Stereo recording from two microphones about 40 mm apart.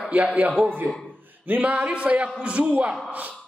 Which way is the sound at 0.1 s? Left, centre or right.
Right.